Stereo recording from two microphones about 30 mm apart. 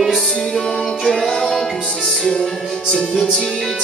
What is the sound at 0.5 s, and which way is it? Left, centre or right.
Music, centre.